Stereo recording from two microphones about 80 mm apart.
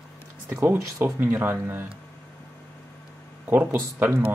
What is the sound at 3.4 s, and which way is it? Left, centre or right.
Speech, right.